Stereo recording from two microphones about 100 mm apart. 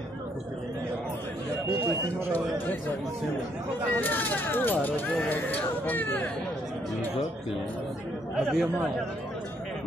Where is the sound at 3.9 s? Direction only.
20° left (ahead or behind).